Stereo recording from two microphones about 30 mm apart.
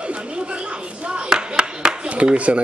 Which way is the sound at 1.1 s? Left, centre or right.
Right.